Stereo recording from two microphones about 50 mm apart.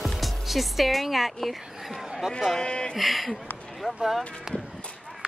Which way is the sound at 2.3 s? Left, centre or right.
Centre.